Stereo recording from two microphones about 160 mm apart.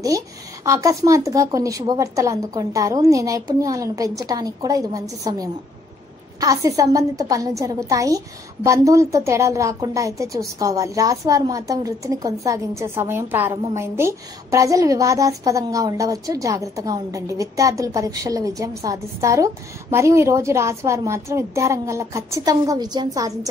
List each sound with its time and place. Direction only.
0.7 s a woman's voice: 20° right (ahead or behind)